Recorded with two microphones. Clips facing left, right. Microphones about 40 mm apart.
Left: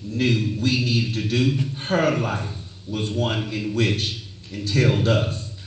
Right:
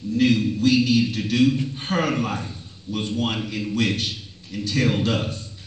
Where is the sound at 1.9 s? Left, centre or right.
Left.